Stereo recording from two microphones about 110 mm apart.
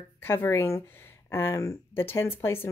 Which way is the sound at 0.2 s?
20° left (ahead or behind).